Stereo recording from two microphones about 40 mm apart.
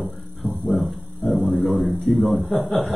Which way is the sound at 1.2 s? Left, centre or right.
Left.